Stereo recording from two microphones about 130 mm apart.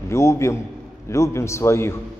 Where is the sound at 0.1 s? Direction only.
20° left (ahead or behind).